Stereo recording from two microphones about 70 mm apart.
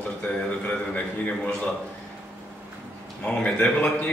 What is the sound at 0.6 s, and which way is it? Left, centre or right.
Speech, centre.